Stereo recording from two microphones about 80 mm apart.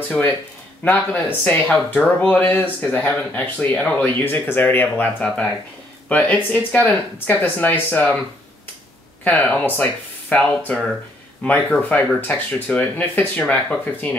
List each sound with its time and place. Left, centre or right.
0.8 s speech: left
9.2 s speech: centre